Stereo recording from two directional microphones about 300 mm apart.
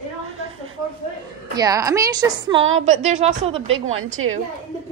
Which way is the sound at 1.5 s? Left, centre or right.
Centre.